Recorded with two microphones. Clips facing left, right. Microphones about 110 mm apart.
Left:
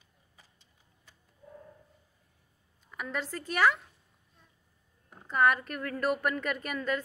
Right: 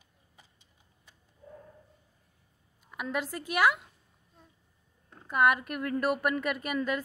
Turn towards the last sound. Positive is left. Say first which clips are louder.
# right 1 dB
turn(degrees=-10)  # may be behind; listen again after turning